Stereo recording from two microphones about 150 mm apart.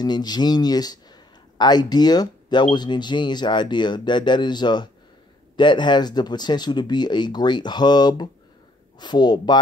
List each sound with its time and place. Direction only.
0.0 s a man's voice: 30° left (ahead or behind)